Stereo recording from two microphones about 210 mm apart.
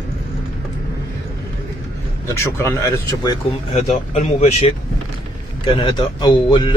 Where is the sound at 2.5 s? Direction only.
15° left (ahead or behind).